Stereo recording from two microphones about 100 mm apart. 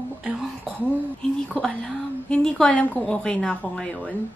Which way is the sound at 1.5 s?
15° left (ahead or behind).